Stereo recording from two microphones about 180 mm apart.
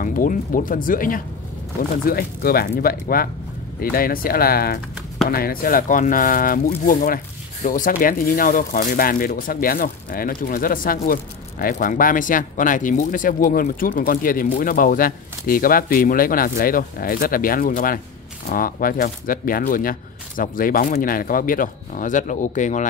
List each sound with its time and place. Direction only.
0.0 s speech: 50° left (ahead or behind)